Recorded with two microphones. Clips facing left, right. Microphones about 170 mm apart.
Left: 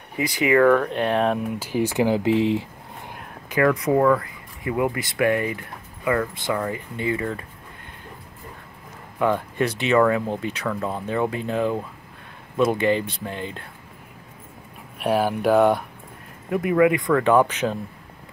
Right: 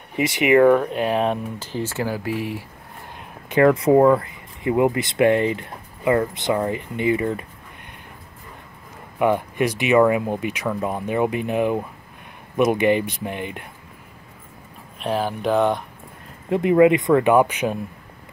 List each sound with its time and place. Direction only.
0.1 s speech: 20° right (ahead or behind)
0.8 s speech: 5° right (ahead or behind)
1.7 s speech: 15° left (ahead or behind)
3.4 s speech: 30° right (ahead or behind)
9.2 s speech: 15° right (ahead or behind)
15.0 s speech: 10° left (ahead or behind)
16.4 s speech: 25° right (ahead or behind)